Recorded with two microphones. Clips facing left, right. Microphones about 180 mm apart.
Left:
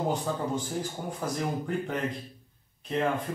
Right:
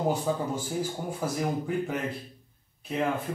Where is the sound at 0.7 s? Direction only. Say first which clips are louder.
Right 2 dB; 5° right (ahead or behind).